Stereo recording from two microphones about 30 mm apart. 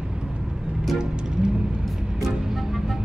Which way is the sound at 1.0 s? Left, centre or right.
Right.